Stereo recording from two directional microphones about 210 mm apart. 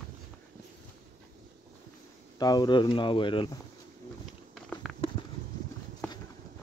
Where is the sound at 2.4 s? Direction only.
20° left (ahead or behind).